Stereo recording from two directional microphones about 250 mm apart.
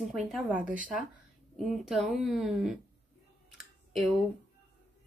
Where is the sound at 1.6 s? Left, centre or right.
Centre.